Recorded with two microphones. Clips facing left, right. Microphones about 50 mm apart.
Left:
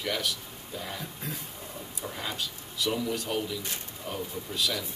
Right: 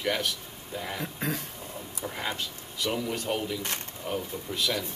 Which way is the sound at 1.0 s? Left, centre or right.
Right.